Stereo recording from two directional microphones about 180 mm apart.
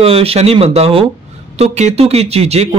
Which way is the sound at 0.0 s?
35° right (ahead or behind).